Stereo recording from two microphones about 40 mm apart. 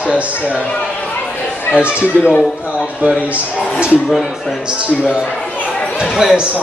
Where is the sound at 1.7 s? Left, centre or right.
Right.